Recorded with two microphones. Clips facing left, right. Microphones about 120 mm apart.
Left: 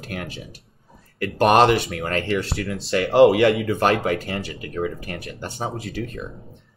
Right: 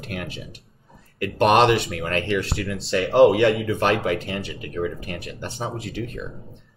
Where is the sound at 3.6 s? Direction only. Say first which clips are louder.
Left 1 dB; 40° left (ahead or behind).